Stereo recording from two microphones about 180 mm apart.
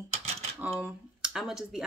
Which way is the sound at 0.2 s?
35° right (ahead or behind).